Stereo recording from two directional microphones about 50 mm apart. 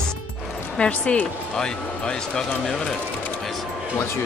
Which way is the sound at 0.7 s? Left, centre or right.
Left.